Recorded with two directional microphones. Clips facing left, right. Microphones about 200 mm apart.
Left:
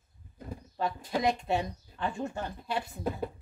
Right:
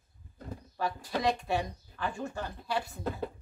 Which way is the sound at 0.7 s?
25° left (ahead or behind).